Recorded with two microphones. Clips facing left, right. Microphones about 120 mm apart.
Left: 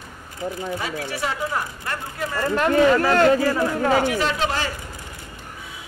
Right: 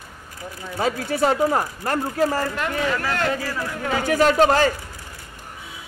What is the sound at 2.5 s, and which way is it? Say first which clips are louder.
Speech: left 8 dB; 35° left (ahead or behind).